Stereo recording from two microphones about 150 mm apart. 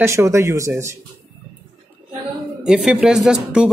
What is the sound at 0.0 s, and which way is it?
Speech, 20° right (ahead or behind).